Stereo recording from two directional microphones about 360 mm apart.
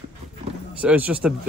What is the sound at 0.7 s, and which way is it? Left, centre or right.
Speech, centre.